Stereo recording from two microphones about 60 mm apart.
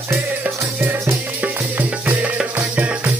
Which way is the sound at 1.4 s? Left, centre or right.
Right.